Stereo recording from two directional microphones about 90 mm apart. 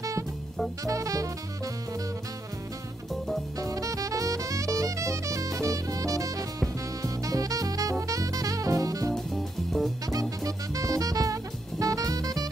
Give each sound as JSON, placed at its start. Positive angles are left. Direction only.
{"t": 0.8, "sound": "music", "side_deg": -40}
{"t": 3.5, "sound": "music", "side_deg": -40}
{"t": 7.0, "sound": "saxophone", "side_deg": -40}
{"t": 9.1, "sound": "music", "side_deg": 5}
{"t": 10.4, "sound": "music", "side_deg": -40}